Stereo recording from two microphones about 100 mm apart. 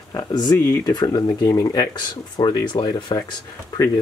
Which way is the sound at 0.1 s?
40° left (ahead or behind).